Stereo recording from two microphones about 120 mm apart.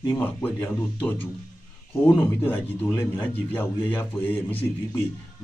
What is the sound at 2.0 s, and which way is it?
Speech, 15° left (ahead or behind).